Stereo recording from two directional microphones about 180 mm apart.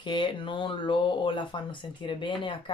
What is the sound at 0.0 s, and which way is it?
Speech, 25° left (ahead or behind).